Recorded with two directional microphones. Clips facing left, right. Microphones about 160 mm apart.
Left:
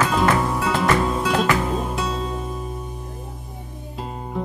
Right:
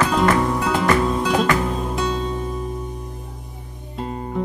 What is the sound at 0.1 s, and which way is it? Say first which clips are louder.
Music: right 2 dB; centre (ahead or behind).